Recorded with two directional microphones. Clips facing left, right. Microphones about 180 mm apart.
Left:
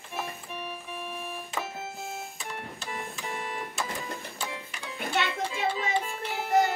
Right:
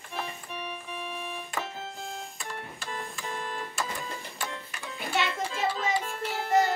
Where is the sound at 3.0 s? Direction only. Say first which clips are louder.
Even; 15° left (ahead or behind).